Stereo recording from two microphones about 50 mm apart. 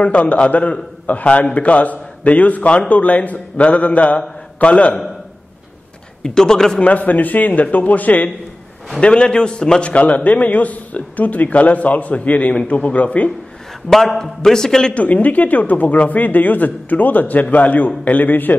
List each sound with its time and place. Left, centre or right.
0.0 s a man's voice: left
6.2 s a man's voice: centre
6.8 s speech: left
9.0 s a man's voice: centre
13.8 s a man's voice: centre
15.0 s speech: left